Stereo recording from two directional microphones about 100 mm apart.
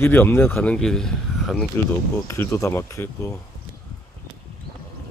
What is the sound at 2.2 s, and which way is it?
Speech, 25° left (ahead or behind).